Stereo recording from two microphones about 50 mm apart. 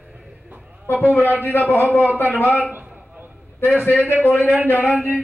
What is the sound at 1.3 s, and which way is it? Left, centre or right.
Speech, left.